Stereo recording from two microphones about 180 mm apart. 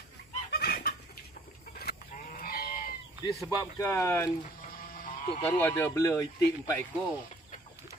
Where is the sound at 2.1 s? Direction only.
50° left (ahead or behind).